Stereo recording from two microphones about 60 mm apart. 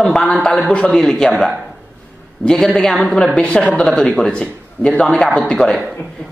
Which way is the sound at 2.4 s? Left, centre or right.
Centre.